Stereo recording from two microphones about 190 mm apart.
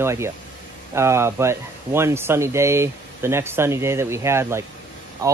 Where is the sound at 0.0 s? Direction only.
15° right (ahead or behind).